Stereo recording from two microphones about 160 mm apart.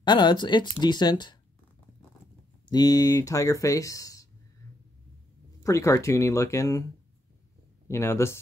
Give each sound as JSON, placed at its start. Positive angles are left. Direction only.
{"t": 0.0, "sound": "speech", "side_deg": 30}
{"t": 2.6, "sound": "speech", "side_deg": 25}
{"t": 5.6, "sound": "speech", "side_deg": 20}
{"t": 7.9, "sound": "speech", "side_deg": 15}